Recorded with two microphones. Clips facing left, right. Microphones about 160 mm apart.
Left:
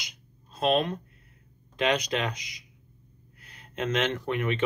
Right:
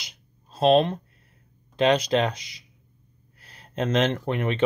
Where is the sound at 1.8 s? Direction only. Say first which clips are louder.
Right 6 dB; 30° right (ahead or behind).